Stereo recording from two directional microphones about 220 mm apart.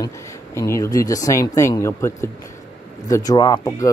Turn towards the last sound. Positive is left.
turn(degrees=15)  # may be behind; listen again after turning